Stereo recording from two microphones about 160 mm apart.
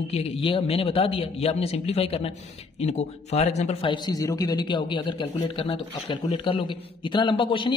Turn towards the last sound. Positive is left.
turn(degrees=30)  # may be behind; listen again after turning